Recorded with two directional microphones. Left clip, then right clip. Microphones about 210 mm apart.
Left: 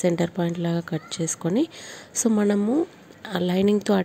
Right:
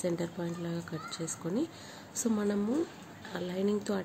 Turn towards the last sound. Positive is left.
turn(degrees=40)  # may be behind; listen again after turning